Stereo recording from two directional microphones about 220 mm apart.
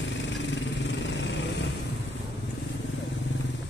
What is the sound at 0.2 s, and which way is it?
Vehicle, 55° left (ahead or behind).